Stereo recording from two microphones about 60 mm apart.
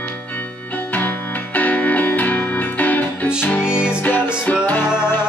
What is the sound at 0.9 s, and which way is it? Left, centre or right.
Music, left.